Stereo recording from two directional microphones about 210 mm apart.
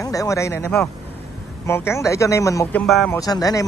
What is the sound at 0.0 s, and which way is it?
Speech, 15° left (ahead or behind).